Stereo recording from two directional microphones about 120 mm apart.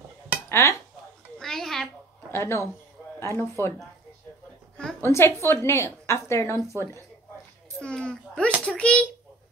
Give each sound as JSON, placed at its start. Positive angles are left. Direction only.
{"t": 0.5, "sound": "dishes", "side_deg": 25}
{"t": 1.4, "sound": "babbling", "side_deg": 5}
{"t": 2.3, "sound": "a woman's voice", "side_deg": 20}
{"t": 5.0, "sound": "a woman's voice", "side_deg": 20}
{"t": 7.8, "sound": "a sound", "side_deg": 5}
{"t": 8.6, "sound": "a child's voice", "side_deg": 10}